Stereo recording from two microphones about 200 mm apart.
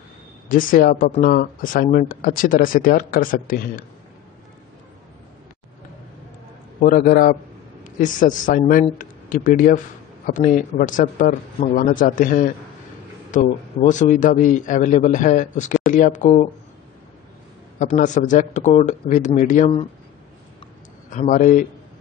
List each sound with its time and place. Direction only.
0.5 s speech: 45° left (ahead or behind)
6.8 s a man's voice: 45° left (ahead or behind)
17.7 s a man's voice: 40° left (ahead or behind)
21.1 s a man's voice: 40° left (ahead or behind)